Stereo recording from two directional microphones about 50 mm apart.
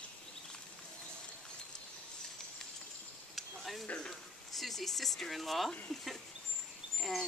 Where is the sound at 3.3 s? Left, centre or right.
Centre.